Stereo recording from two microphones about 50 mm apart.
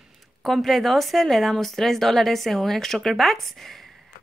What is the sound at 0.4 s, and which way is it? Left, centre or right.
Speech, centre.